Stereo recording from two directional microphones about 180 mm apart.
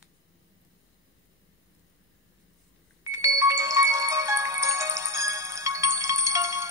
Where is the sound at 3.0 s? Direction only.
15° right (ahead or behind).